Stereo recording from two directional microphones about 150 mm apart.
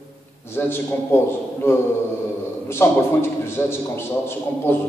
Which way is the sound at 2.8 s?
15° left (ahead or behind).